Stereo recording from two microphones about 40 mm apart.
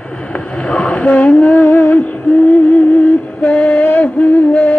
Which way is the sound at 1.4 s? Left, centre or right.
Left.